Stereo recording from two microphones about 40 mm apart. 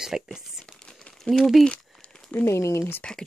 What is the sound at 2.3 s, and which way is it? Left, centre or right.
Speech, left.